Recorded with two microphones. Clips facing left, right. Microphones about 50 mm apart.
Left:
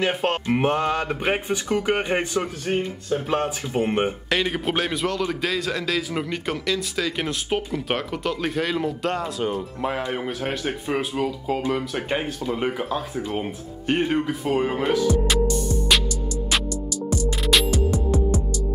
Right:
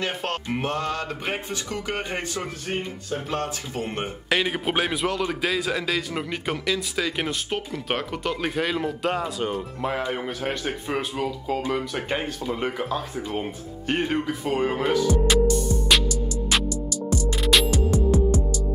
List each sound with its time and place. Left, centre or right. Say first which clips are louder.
0.0 s speech: left 5 dB; centre
4.3 s a man's voice: even; centre